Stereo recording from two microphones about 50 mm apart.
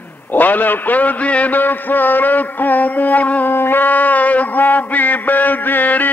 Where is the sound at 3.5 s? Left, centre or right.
Left.